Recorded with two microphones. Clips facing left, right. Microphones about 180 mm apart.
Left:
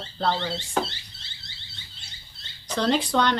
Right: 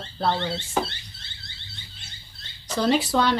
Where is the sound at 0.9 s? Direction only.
55° right (ahead or behind).